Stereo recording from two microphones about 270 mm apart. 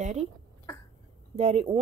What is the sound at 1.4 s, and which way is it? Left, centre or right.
Speech, right.